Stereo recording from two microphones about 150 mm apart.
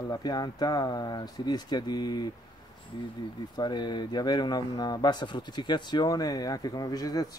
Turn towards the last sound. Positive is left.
turn(degrees=25)  # may be behind; listen again after turning